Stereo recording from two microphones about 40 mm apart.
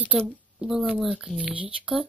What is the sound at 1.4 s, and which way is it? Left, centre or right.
Speech, right.